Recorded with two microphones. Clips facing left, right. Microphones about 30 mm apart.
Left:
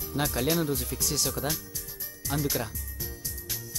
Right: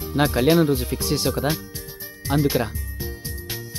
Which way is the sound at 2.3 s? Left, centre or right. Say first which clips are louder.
Right 9 dB; right.